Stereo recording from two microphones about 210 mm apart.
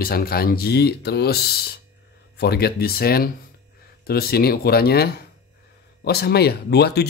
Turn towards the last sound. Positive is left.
turn(degrees=50)  # may be behind; listen again after turning